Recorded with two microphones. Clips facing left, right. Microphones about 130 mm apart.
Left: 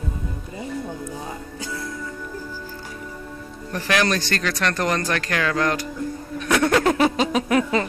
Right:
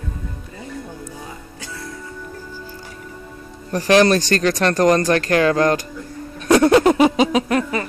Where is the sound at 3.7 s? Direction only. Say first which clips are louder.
Right 8 dB; 35° right (ahead or behind).